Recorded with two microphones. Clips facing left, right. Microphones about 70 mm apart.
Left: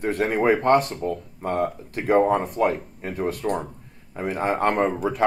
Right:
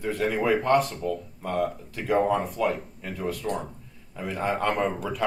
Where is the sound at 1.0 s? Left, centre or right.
Left.